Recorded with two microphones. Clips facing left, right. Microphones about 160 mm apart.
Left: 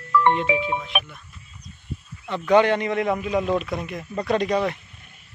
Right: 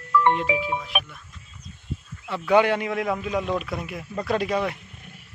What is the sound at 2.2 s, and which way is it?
Speech, 5° right (ahead or behind).